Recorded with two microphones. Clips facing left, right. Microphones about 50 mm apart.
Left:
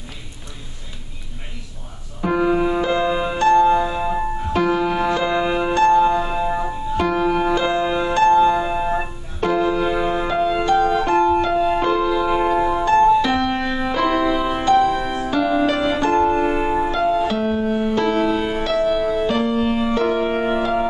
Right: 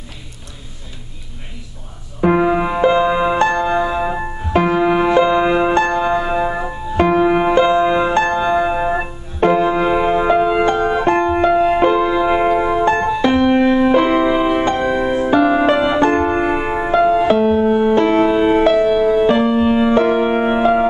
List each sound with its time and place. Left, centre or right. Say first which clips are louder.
2.2 s music: right 4 dB; right
8.0 s music: left 1 dB; right
12.8 s music: left 1 dB; right